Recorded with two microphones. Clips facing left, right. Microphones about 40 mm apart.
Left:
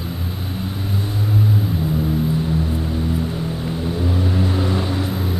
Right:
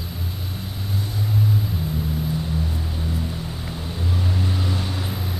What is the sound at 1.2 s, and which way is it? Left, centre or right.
Vehicle, left.